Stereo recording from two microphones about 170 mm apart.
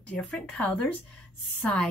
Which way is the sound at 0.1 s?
10° left (ahead or behind).